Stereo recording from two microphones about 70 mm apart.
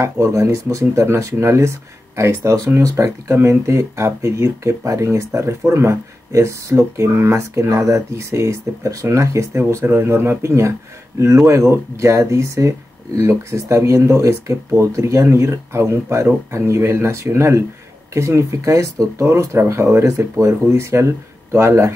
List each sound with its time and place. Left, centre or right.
0.0 s speech: right